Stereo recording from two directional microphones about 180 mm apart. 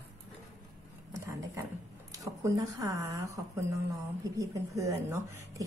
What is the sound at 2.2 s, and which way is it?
A woman's voice, 20° right (ahead or behind).